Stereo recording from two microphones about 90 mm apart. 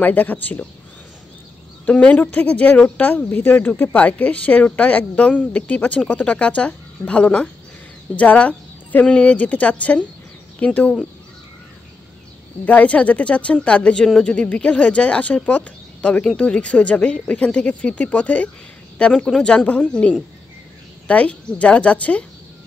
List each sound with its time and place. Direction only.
0.0 s speech: 20° left (ahead or behind)
1.9 s speech: 15° left (ahead or behind)
12.6 s speech: 15° left (ahead or behind)